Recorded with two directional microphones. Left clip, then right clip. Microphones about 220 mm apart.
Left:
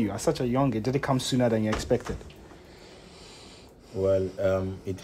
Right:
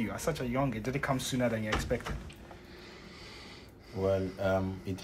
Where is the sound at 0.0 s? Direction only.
45° left (ahead or behind).